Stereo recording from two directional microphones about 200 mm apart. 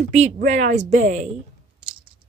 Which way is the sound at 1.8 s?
25° right (ahead or behind).